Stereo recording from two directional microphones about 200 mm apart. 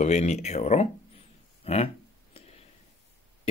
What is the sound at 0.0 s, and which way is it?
Speech, 35° left (ahead or behind).